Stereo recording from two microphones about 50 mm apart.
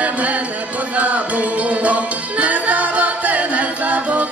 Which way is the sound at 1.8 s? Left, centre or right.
Right.